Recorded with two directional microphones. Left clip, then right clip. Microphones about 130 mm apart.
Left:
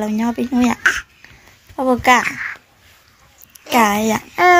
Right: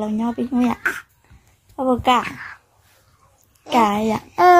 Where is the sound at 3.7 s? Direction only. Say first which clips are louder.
Left 3 dB; 5° left (ahead or behind).